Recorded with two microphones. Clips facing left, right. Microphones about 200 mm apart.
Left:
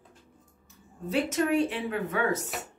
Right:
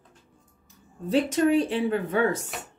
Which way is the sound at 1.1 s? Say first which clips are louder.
Right 5 dB; 35° right (ahead or behind).